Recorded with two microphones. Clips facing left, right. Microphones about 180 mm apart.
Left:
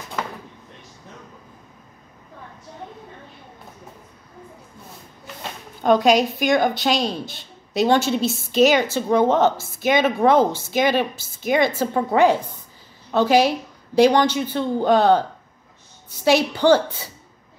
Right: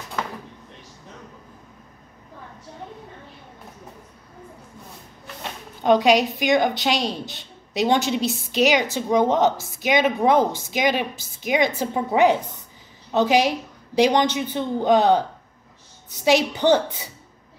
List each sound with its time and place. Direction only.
5.9 s a woman's voice: 45° left (ahead or behind)
7.1 s a woman's voice: 20° right (ahead or behind)
16.3 s a woman's voice: 20° right (ahead or behind)